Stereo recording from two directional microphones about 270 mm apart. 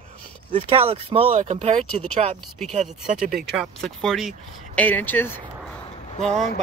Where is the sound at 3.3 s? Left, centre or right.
Centre.